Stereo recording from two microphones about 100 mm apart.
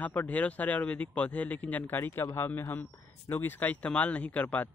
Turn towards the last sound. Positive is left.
turn(degrees=15)  # may be behind; listen again after turning